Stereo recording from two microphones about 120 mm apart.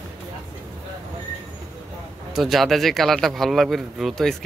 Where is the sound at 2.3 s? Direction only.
Centre (ahead or behind).